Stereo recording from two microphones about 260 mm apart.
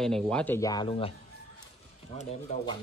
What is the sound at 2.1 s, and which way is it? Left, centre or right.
Speech, left.